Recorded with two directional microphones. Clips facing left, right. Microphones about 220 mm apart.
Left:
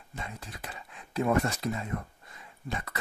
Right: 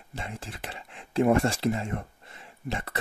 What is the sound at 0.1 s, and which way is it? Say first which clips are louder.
Speech: right 3 dB; 30° right (ahead or behind).